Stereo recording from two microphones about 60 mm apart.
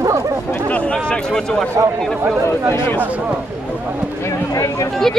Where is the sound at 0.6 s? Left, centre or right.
Left.